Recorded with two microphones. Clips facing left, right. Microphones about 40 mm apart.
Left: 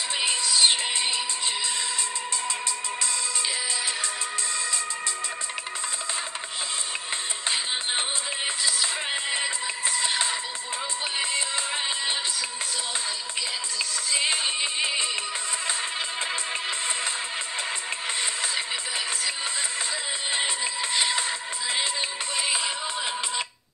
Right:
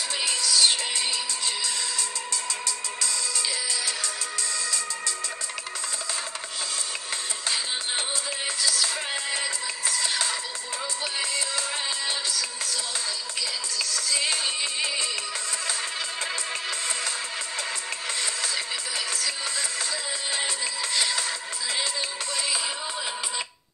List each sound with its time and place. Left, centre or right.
0.2 s music: left
8.6 s music: left
14.1 s music: left
20.9 s music: left